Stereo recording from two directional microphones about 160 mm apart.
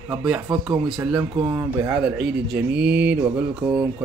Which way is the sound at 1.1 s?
30° right (ahead or behind).